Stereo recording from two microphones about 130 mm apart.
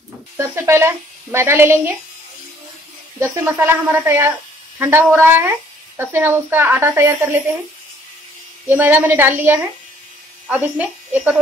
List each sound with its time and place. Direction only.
0.4 s a woman's voice: 20° right (ahead or behind)
3.2 s a woman's voice: 15° right (ahead or behind)
8.6 s speech: 15° right (ahead or behind)